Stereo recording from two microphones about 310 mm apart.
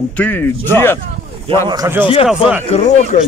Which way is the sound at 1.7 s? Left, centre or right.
Centre.